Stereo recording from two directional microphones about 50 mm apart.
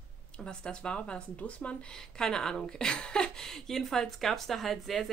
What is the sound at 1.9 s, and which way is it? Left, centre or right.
A woman's voice, centre.